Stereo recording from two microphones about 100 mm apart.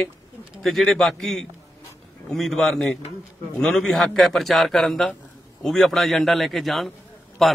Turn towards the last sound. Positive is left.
turn(degrees=0)  # may be behind; listen again after turning